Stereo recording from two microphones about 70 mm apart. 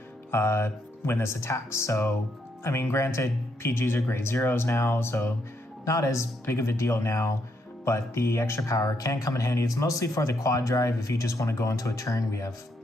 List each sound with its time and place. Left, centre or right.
0.3 s speech: left
5.9 s speech: left